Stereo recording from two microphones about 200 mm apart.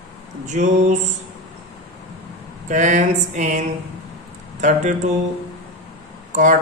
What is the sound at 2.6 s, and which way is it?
Speech, 40° right (ahead or behind).